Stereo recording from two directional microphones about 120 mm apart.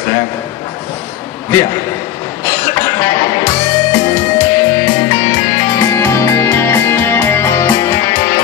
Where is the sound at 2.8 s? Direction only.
25° left (ahead or behind).